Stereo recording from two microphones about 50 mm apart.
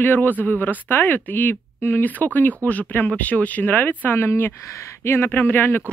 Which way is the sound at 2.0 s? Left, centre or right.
Left.